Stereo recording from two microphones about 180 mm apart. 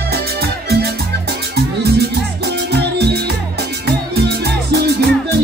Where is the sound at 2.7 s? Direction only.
65° right (ahead or behind).